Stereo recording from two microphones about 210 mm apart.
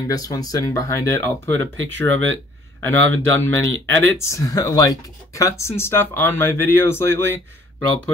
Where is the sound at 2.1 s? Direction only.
65° right (ahead or behind).